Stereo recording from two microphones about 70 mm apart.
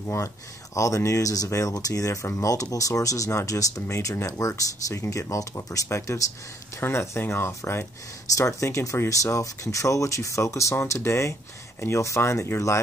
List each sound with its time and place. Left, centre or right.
0.7 s speech: left
2.2 s speech: left
8.3 s speech: left